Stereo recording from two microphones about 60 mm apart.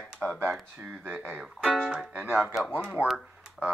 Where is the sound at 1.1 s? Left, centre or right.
Right.